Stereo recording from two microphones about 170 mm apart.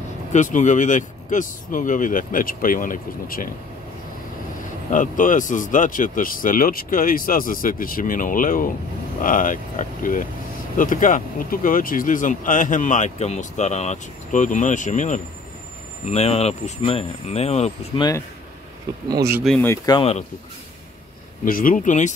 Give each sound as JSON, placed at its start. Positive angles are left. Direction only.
{"t": 0.3, "sound": "speech", "side_deg": 45}
{"t": 4.9, "sound": "speech", "side_deg": 50}
{"t": 19.4, "sound": "speech", "side_deg": 5}
{"t": 20.0, "sound": "speech", "side_deg": 35}
{"t": 21.5, "sound": "speech", "side_deg": 55}